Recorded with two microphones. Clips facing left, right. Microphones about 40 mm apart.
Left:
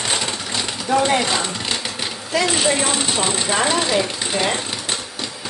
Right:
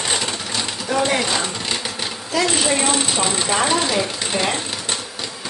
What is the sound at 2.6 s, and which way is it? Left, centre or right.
Speech, centre.